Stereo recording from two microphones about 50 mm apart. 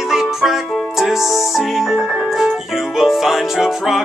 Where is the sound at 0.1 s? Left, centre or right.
Centre.